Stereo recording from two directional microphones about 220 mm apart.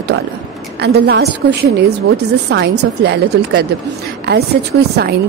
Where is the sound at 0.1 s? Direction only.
50° right (ahead or behind).